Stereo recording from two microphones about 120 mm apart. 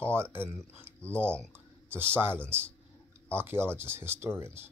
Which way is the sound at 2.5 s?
20° right (ahead or behind).